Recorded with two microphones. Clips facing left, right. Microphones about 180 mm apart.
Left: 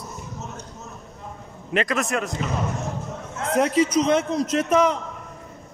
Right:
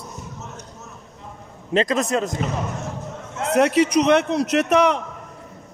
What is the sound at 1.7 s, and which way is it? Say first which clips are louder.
Speech: right 4 dB; 20° right (ahead or behind).